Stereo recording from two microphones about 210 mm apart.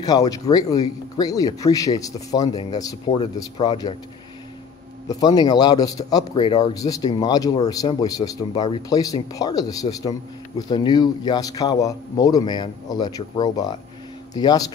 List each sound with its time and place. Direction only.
0.0 s a man's voice: 15° left (ahead or behind)
5.0 s a man's voice: 20° left (ahead or behind)